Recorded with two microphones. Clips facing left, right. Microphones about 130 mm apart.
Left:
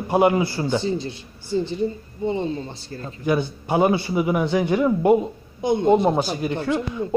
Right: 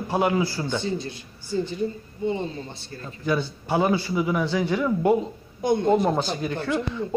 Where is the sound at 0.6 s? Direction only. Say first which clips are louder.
Left 4 dB; 30° left (ahead or behind).